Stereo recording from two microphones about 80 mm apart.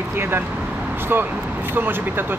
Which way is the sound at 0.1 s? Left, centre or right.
Right.